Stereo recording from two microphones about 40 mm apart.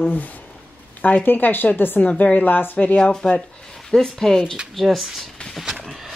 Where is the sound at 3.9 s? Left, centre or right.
Centre.